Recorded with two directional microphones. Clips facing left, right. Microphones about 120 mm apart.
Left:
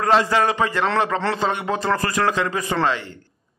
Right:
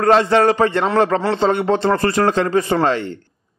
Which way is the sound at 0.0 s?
35° right (ahead or behind).